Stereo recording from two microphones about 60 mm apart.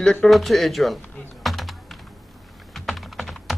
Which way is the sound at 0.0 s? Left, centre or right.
Centre.